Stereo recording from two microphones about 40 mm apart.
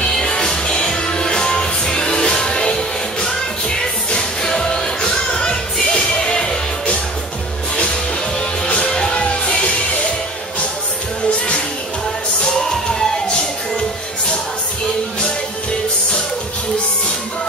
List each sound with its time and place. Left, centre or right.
0.0 s music: left
8.4 s music: left